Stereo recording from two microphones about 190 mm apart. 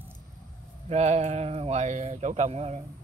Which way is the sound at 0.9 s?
35° right (ahead or behind).